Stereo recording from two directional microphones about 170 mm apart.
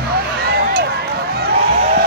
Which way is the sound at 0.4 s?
65° right (ahead or behind).